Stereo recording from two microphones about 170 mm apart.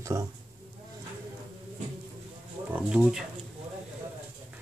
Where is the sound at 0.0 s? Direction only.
15° right (ahead or behind).